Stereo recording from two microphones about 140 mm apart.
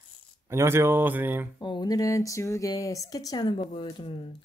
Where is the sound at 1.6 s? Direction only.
30° left (ahead or behind).